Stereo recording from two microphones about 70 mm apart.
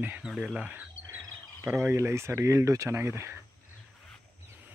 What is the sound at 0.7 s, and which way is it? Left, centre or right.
Frog, right.